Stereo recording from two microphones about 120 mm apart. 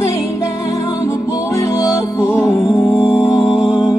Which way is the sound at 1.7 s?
25° left (ahead or behind).